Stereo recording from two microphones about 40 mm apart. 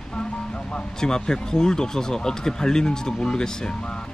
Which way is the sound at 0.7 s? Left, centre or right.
Centre.